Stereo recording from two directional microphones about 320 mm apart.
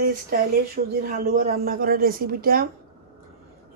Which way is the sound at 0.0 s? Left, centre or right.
Right.